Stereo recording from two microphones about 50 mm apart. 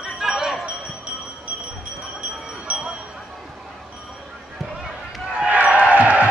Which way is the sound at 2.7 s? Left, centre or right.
Right.